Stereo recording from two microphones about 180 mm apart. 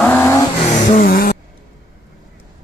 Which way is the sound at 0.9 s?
55° left (ahead or behind).